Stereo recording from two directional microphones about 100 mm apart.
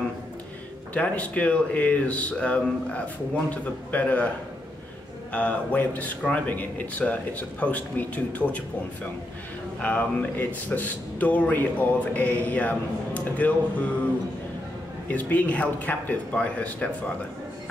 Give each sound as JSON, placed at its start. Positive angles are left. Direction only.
{"t": 0.9, "sound": "speech", "side_deg": 15}
{"t": 5.3, "sound": "speech", "side_deg": 15}
{"t": 15.0, "sound": "speech", "side_deg": 15}